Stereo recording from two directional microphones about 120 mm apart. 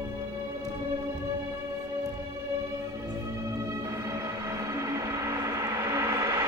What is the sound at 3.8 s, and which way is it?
Vehicle, 25° right (ahead or behind).